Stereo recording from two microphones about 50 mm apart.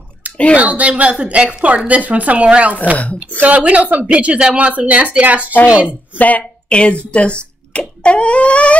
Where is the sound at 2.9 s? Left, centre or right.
Left.